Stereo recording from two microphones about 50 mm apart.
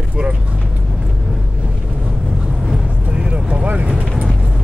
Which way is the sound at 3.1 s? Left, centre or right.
Right.